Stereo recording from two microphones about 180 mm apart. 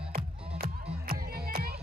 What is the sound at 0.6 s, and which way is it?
Music, 55° right (ahead or behind).